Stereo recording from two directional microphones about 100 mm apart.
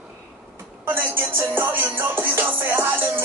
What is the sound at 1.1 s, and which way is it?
Music, 25° right (ahead or behind).